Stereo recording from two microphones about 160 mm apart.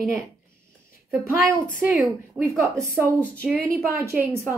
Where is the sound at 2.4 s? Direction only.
5° left (ahead or behind).